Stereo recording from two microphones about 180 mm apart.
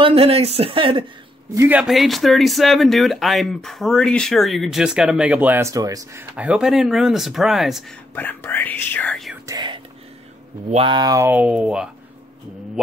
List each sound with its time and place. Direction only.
0.0 s speech: 30° right (ahead or behind)
1.5 s speech: 10° right (ahead or behind)
6.3 s speech: 5° right (ahead or behind)
8.1 s speech: 10° left (ahead or behind)
9.5 s speech: 25° right (ahead or behind); by 11.9 s 5° right (ahead or behind)